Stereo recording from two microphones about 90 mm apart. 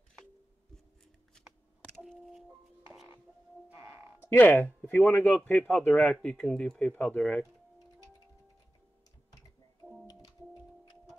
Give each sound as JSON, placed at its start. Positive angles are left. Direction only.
{"t": 2.0, "sound": "a sound", "side_deg": -5}
{"t": 3.6, "sound": "music", "side_deg": -20}
{"t": 4.3, "sound": "speech", "side_deg": 20}